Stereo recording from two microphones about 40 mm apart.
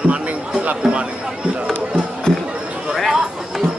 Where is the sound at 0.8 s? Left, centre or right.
Right.